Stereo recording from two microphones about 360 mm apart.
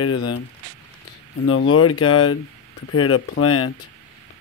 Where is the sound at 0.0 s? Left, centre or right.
Left.